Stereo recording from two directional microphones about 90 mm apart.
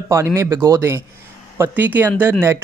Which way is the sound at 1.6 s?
20° right (ahead or behind).